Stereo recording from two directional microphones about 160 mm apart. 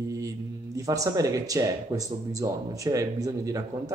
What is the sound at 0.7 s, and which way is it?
A man's voice, 20° right (ahead or behind).